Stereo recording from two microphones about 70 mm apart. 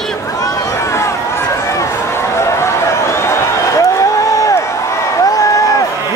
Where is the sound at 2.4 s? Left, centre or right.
Left.